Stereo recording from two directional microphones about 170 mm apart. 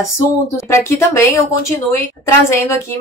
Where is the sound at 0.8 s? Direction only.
15° left (ahead or behind).